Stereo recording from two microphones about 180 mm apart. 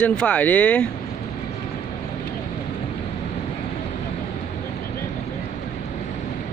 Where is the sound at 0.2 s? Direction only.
10° left (ahead or behind).